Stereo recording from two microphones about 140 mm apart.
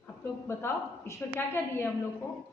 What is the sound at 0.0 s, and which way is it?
A woman's voice, 20° left (ahead or behind).